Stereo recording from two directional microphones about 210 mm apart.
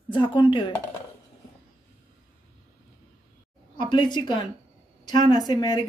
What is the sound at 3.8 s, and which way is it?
A woman's voice, 20° left (ahead or behind).